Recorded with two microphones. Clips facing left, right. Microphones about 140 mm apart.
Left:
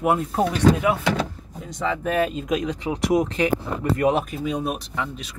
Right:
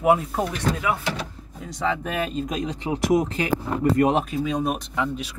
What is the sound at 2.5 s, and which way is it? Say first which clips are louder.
Speech: left 4 dB; 40° right (ahead or behind).